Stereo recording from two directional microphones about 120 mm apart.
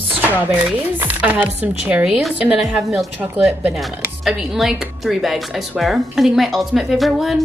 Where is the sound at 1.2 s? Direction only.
15° right (ahead or behind).